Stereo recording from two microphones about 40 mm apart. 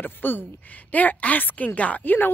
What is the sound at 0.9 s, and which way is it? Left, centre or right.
Speech, left.